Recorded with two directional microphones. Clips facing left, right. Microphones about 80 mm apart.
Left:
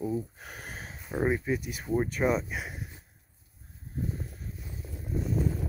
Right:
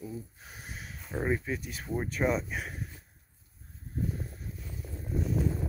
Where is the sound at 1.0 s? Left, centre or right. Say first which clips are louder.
Left 3 dB; centre.